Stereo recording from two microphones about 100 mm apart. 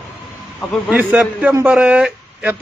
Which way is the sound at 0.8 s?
15° right (ahead or behind).